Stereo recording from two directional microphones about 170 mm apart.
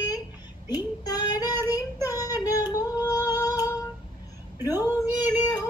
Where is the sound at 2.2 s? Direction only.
20° left (ahead or behind).